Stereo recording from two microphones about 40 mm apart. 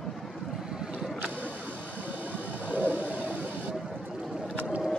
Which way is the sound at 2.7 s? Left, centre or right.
Right.